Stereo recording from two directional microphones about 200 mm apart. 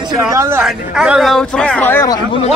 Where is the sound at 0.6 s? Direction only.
Centre (ahead or behind).